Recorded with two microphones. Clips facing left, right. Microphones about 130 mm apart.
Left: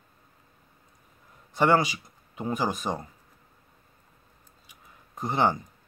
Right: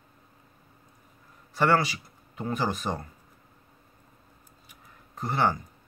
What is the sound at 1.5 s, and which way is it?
Speech, 15° left (ahead or behind).